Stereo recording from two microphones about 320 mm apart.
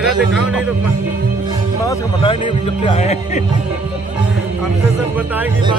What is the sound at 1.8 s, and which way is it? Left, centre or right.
A man's voice, centre.